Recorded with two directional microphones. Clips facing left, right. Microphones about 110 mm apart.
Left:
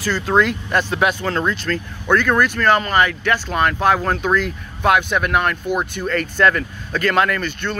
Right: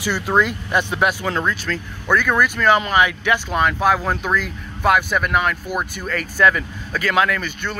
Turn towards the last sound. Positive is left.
turn(degrees=-10)  # may be behind; listen again after turning